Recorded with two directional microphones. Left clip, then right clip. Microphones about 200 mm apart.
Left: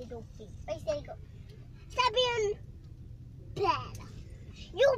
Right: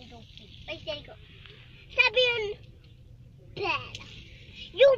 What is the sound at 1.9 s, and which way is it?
Speech, 50° left (ahead or behind).